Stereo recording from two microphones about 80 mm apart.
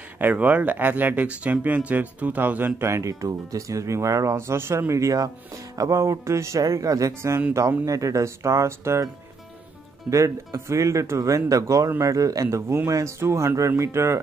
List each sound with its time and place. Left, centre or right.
0.2 s speech: centre; by 9.0 s right
10.0 s speech: right